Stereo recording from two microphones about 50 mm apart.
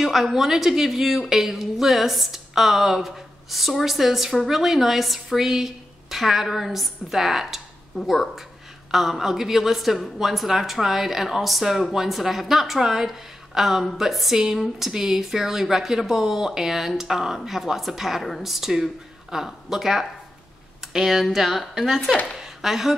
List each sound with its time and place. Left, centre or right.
0.0 s a woman's voice: centre
8.9 s a woman's voice: centre